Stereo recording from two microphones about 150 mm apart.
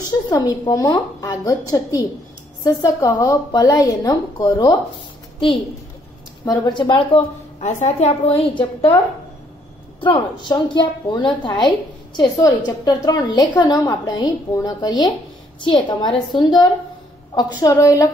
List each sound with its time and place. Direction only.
0.3 s a woman's voice: 25° left (ahead or behind)
6.4 s a woman's voice: 30° left (ahead or behind); by 8.2 s 50° left (ahead or behind)
8.3 s a woman's voice: 35° left (ahead or behind); by 18.1 s 20° left (ahead or behind)